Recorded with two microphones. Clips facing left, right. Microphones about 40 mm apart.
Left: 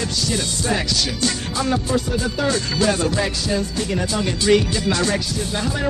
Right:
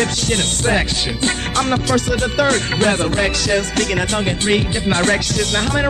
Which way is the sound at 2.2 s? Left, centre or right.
Right.